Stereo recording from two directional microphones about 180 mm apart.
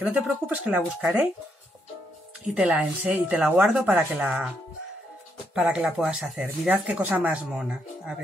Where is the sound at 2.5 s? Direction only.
5° right (ahead or behind).